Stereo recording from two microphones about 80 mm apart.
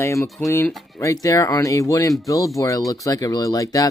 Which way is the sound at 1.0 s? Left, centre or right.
Left.